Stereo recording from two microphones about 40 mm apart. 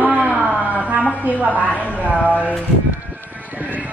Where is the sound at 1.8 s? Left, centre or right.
Right.